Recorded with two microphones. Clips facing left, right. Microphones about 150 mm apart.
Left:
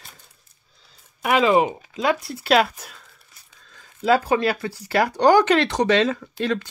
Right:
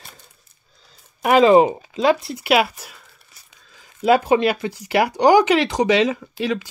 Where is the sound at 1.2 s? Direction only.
40° right (ahead or behind).